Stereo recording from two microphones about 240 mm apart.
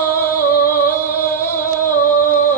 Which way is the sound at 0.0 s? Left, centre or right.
Left.